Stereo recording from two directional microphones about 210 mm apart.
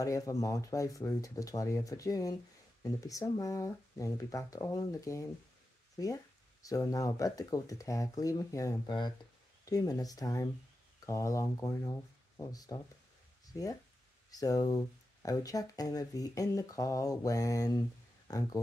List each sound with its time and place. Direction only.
0.0 s speech: 15° left (ahead or behind)